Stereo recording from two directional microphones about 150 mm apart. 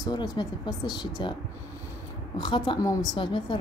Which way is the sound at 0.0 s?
25° left (ahead or behind).